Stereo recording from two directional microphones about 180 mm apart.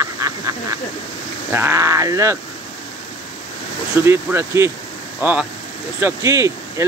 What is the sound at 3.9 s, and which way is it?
Speech, 15° right (ahead or behind).